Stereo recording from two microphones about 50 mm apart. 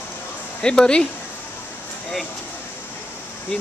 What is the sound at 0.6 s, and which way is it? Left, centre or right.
Speech, centre.